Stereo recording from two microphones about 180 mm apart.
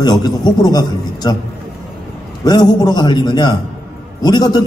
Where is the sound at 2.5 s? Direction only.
20° left (ahead or behind).